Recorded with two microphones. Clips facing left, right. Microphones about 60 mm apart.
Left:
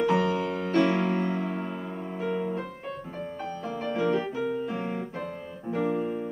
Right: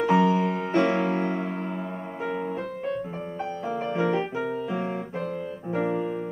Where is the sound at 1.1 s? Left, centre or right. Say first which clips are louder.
Right 1 dB; centre.